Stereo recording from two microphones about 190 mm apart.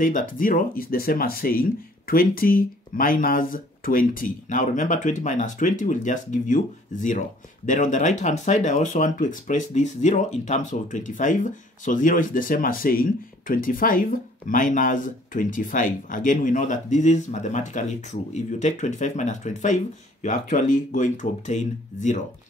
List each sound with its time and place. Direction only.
0.0 s speech: 45° left (ahead or behind)